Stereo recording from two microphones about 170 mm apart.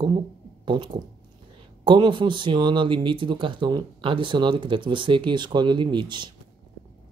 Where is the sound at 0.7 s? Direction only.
30° right (ahead or behind).